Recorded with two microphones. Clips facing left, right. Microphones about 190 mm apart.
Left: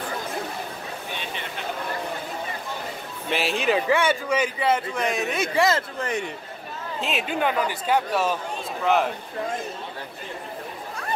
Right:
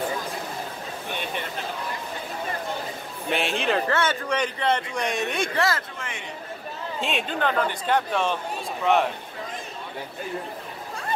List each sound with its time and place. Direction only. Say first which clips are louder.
1.1 s chatter: right 5 dB; 50° right (ahead or behind)
3.3 s speech: left 1 dB; centre (ahead or behind)
5.6 s speech: left 5 dB; 20° left (ahead or behind)
5.9 s a man's voice: left 9 dB; 40° left (ahead or behind)
7.0 s speech: left 1 dB; 5° left (ahead or behind)